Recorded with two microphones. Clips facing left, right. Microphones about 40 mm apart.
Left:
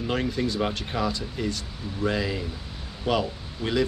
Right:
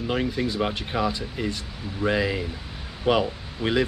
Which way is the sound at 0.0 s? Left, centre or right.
Centre.